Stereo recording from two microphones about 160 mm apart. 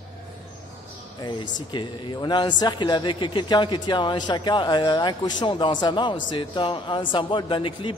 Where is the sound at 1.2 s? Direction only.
25° left (ahead or behind).